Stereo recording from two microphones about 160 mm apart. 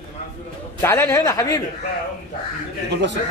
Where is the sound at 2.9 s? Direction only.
90° right.